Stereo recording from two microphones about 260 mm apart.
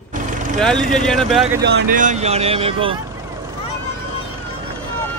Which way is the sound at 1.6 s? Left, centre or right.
Right.